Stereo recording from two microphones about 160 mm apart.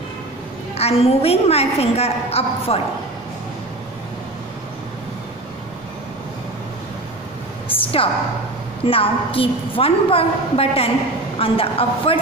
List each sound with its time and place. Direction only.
0.7 s a woman's voice: 40° left (ahead or behind)
7.6 s a sound: 35° left (ahead or behind)
8.8 s a woman's voice: 35° left (ahead or behind)